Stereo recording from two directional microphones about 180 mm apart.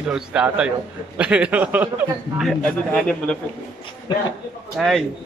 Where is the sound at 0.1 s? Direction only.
5° right (ahead or behind).